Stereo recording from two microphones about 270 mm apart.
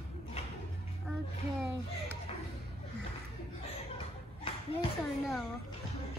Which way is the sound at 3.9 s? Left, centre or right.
Centre.